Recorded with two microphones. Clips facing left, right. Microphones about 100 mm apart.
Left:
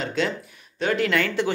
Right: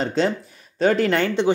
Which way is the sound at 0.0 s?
35° right (ahead or behind).